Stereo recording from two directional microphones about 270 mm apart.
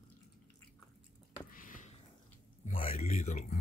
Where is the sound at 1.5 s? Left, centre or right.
Left.